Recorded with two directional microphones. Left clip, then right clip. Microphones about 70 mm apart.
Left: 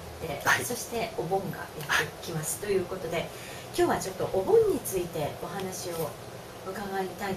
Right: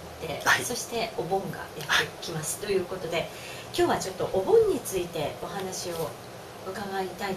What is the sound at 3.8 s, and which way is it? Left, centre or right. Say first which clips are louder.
Speech: right 1 dB; right.